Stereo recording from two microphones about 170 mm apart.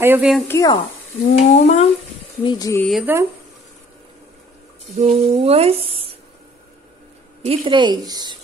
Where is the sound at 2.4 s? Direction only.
25° left (ahead or behind).